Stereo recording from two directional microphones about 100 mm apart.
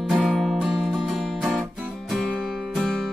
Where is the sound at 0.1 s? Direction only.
Centre (ahead or behind).